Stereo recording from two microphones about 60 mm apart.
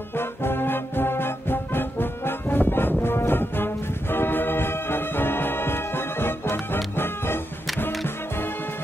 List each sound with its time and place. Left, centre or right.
0.1 s music: left